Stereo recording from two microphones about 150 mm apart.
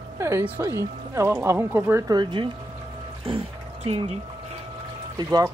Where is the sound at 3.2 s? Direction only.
40° right (ahead or behind).